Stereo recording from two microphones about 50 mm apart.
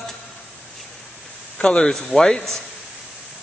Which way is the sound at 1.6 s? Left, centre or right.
Centre.